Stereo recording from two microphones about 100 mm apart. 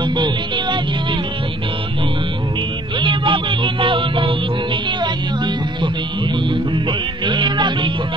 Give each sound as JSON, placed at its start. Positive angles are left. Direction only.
{"t": 0.0, "sound": "music", "side_deg": -50}
{"t": 3.0, "sound": "music", "side_deg": -55}